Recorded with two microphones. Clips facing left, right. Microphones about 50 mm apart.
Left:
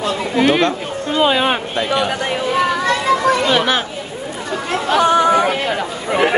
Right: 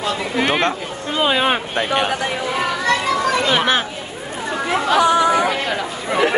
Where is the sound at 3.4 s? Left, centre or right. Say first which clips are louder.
Left 1 dB; centre.